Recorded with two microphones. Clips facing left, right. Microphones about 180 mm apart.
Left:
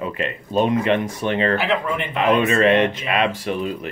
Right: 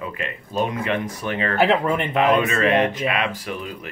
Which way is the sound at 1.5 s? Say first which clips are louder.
Right 2 dB; 50° right (ahead or behind).